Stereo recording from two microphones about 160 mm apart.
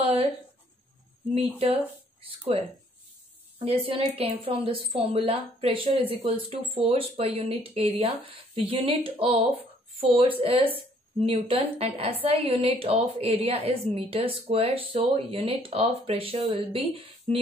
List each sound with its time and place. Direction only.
0.0 s speech: 35° right (ahead or behind)
1.3 s a woman's voice: 40° right (ahead or behind)
3.5 s a woman's voice: 35° right (ahead or behind)